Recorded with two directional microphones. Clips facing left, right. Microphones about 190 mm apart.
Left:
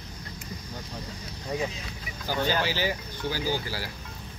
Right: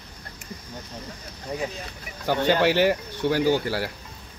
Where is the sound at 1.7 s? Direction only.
65° right (ahead or behind).